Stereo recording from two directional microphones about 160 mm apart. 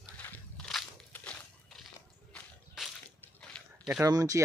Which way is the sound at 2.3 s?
Centre (ahead or behind).